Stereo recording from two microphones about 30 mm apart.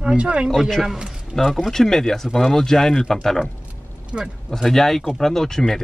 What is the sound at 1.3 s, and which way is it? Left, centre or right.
Speech, centre.